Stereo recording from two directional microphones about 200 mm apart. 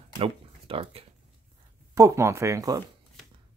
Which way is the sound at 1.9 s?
15° right (ahead or behind).